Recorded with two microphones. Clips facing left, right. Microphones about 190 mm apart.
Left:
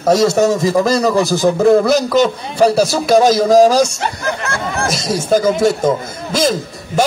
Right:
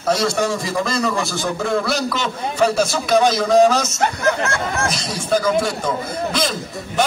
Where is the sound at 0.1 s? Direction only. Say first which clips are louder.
Left 7 dB; 40° left (ahead or behind).